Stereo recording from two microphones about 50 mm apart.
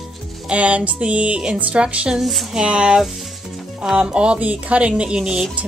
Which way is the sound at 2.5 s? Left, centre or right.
Centre.